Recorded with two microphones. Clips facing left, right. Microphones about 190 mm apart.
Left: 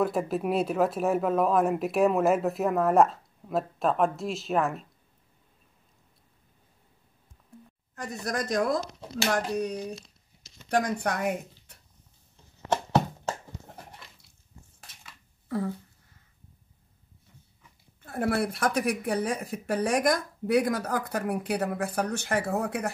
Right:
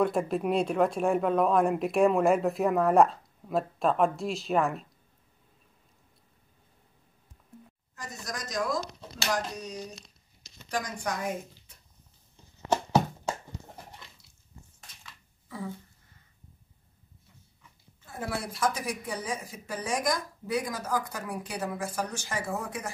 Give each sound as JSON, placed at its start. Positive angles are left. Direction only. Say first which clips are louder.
{"t": 0.0, "sound": "speech", "louder": "even", "side_deg": 5}
{"t": 7.9, "sound": "speech", "louder": "left 7 dB", "side_deg": 60}
{"t": 15.4, "sound": "a sound", "louder": "left 8 dB", "side_deg": 60}
{"t": 18.0, "sound": "speech", "louder": "left 8 dB", "side_deg": 60}